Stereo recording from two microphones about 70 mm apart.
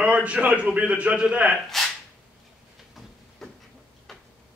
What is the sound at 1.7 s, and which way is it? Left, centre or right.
Speech, centre.